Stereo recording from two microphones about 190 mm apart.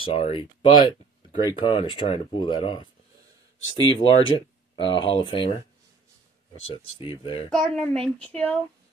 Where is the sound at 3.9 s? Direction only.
30° left (ahead or behind).